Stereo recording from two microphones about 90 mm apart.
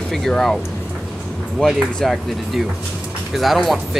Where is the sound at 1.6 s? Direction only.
Centre (ahead or behind).